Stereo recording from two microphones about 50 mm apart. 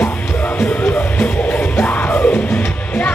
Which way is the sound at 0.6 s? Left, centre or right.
Left.